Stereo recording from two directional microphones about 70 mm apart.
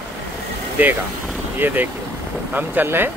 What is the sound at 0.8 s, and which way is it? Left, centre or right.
Speech, right.